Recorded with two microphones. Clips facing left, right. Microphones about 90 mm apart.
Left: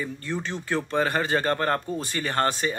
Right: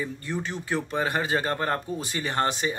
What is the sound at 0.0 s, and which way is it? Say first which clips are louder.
Speech: even; 10° right (ahead or behind).